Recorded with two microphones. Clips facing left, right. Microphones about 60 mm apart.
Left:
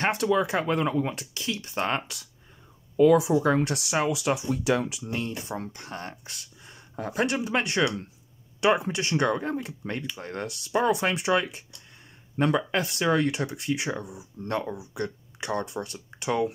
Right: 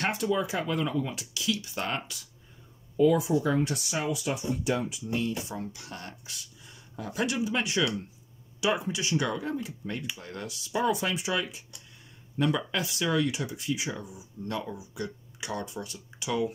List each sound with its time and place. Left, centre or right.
0.1 s speech: left
3.0 s speech: left
5.1 s speech: left
6.3 s speech: left